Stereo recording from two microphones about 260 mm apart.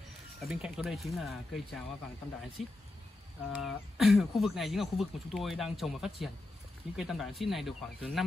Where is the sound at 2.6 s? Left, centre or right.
Left.